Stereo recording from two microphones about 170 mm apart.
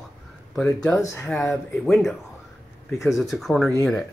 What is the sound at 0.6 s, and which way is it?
Speech, 15° left (ahead or behind).